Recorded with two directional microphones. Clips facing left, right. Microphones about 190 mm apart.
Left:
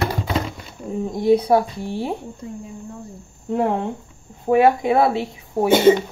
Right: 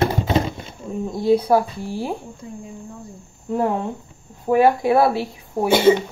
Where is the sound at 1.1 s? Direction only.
20° left (ahead or behind).